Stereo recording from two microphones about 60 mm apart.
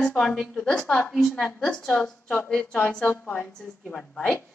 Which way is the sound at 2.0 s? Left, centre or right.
Centre.